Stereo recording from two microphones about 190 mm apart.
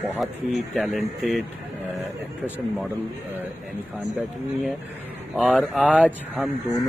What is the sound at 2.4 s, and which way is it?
Speech, 10° right (ahead or behind).